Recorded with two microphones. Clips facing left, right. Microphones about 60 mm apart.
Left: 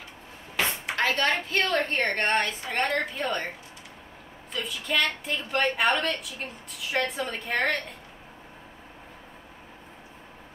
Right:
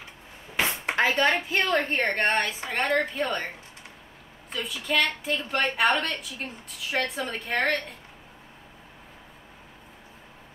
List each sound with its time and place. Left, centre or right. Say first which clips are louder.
0.9 s a woman's voice: right 2 dB; centre
4.6 s a woman's voice: right 1 dB; centre